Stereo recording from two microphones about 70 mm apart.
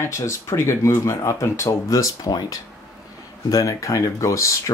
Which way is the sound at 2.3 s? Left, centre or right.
Left.